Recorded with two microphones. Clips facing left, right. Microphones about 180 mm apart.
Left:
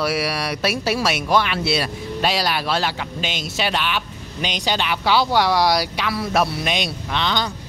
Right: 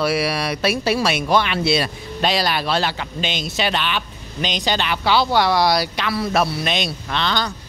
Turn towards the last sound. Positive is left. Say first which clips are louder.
# even
turn(degrees=15)  # may be behind; listen again after turning